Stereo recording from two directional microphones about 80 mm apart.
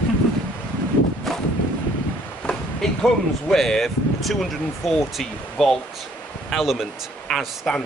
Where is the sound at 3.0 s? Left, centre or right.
Centre.